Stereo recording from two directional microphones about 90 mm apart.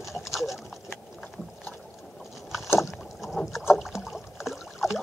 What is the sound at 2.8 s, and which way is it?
Rowboat, 5° right (ahead or behind).